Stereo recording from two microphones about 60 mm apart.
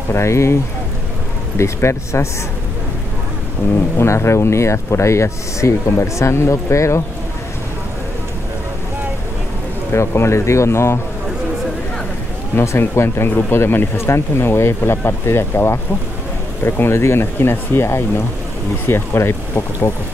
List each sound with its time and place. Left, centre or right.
0.1 s speech: left
1.6 s speech: left
4.0 s speech: left
9.9 s speech: left
12.5 s speech: left